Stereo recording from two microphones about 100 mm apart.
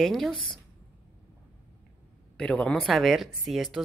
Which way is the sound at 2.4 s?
10° left (ahead or behind).